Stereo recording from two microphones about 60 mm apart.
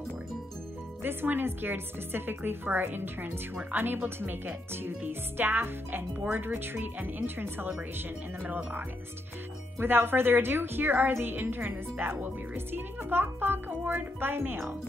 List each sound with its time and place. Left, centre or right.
1.0 s speech: right